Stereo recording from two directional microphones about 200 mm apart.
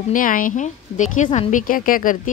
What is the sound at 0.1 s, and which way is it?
A woman's voice, 40° left (ahead or behind).